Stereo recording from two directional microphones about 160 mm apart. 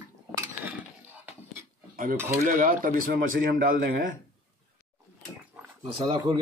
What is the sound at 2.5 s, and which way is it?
Speech, 60° right (ahead or behind).